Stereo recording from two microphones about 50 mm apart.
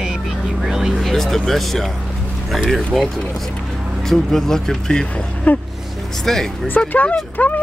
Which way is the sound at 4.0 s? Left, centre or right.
Centre.